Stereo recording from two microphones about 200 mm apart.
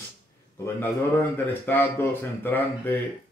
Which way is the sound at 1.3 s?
10° left (ahead or behind).